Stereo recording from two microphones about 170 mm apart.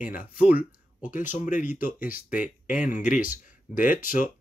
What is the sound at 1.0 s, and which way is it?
Speech, 50° left (ahead or behind).